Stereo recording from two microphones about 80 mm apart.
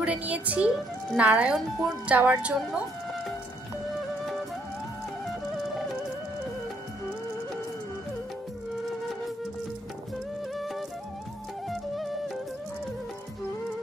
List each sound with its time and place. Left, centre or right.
0.0 s a woman's voice: centre
10.5 s music: centre